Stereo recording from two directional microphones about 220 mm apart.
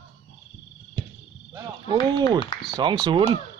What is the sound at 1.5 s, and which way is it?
Speech, 15° right (ahead or behind).